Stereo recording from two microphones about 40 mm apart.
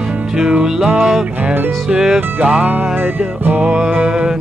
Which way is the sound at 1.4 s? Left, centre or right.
Right.